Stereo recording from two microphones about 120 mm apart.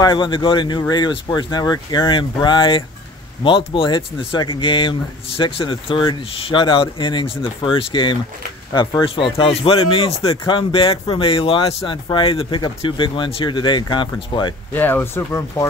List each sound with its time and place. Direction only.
0.0 s speech: 40° left (ahead or behind)
14.7 s speech: 15° left (ahead or behind)